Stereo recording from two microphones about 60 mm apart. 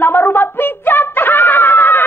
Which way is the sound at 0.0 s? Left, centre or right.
Left.